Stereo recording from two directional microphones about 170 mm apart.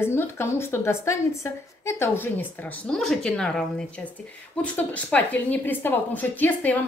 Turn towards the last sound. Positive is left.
turn(degrees=10)  # may be behind; listen again after turning